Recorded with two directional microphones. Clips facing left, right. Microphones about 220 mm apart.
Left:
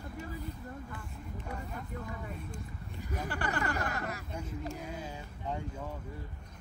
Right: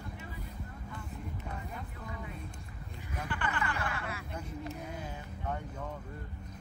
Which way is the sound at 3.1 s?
40° left (ahead or behind).